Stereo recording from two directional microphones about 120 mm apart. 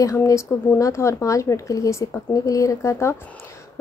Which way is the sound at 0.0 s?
25° left (ahead or behind).